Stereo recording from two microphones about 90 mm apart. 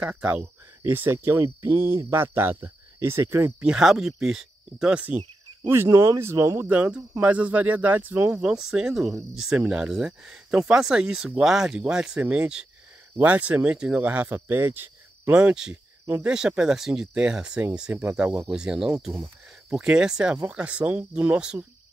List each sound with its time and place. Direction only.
0.0 s speech: 15° right (ahead or behind)
3.6 s speech: 5° right (ahead or behind)
5.6 s speech: 30° right (ahead or behind)
6.7 s speech: 15° right (ahead or behind)
8.4 s speech: 5° right (ahead or behind)
17.9 s speech: 25° right (ahead or behind)
18.5 s speech: 5° right (ahead or behind)